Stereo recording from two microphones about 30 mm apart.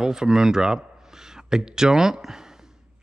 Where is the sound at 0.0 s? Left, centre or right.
Right.